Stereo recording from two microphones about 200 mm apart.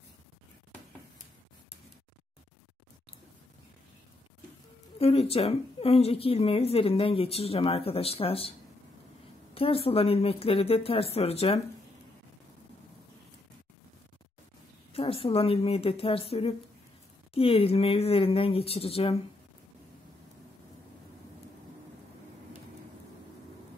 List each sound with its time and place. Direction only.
4.9 s a woman's voice: 30° left (ahead or behind)
14.9 s a woman's voice: 25° left (ahead or behind)